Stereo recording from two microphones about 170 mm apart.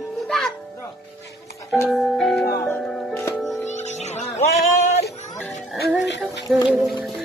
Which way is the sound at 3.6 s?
45° left (ahead or behind).